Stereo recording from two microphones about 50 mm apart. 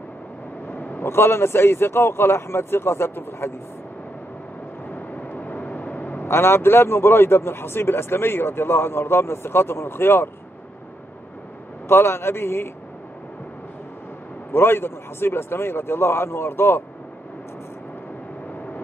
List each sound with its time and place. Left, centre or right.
0.7 s a sound: left
1.0 s speech: left
4.9 s vehicle: left
6.2 s speech: left
11.9 s speech: left
14.5 s speech: left